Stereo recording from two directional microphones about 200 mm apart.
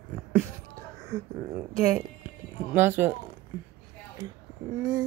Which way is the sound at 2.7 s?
10° right (ahead or behind).